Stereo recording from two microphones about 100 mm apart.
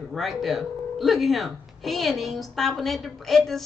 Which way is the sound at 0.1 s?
Centre (ahead or behind).